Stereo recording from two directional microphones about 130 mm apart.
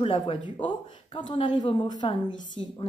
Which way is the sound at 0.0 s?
40° left (ahead or behind).